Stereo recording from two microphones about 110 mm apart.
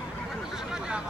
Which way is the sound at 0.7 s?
5° right (ahead or behind).